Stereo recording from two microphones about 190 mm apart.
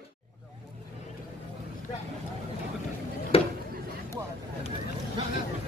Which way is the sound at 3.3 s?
30° left (ahead or behind).